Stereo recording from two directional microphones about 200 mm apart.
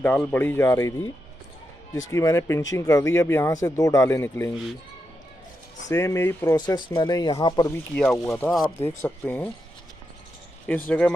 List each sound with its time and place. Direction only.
0.0 s speech: 10° left (ahead or behind)
2.0 s speech: 15° left (ahead or behind)
5.9 s speech: 15° left (ahead or behind)
10.9 s speech: 5° left (ahead or behind)